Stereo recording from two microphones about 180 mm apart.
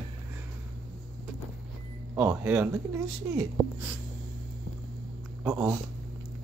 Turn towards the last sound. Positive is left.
turn(degrees=-10)  # may be behind; listen again after turning